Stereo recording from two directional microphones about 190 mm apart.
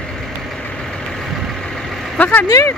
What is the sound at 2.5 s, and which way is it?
Speech, 15° left (ahead or behind).